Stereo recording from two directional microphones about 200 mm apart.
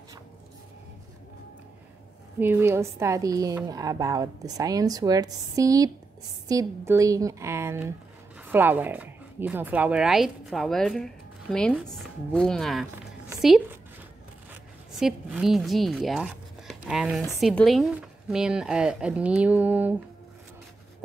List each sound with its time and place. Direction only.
2.4 s a woman's voice: 10° right (ahead or behind)
15.0 s speech: centre (ahead or behind)